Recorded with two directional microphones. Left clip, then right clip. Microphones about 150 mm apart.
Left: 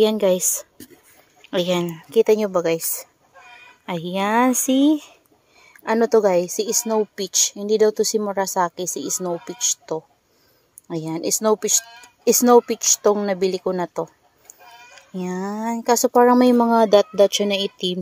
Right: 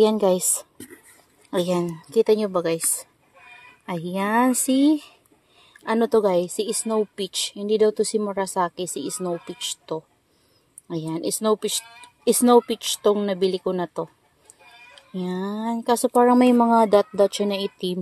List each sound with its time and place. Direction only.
1.6 s speech: 5° left (ahead or behind)
12.7 s a woman's voice: 10° right (ahead or behind)
13.0 s speech: 15° left (ahead or behind)
15.2 s speech: 15° left (ahead or behind)